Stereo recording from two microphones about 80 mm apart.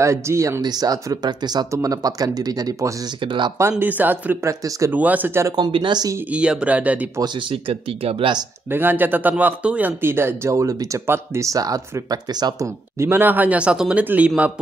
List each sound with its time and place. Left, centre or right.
0.0 s speech: right
0.6 s speech: right
1.7 s speech: right
3.8 s speech: right
4.5 s speech: right
4.9 s speech: right
5.6 s speech: right
6.3 s speech: centre
8.2 s speech: right
8.7 s speech: right
13.0 s speech: right